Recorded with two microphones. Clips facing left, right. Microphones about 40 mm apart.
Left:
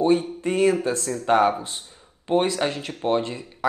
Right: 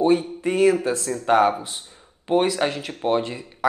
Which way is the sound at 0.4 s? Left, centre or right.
Centre.